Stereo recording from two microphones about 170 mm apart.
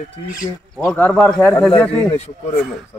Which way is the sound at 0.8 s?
10° left (ahead or behind).